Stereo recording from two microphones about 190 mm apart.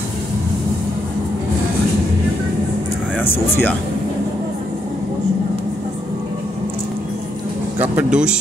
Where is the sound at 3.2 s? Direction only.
10° left (ahead or behind).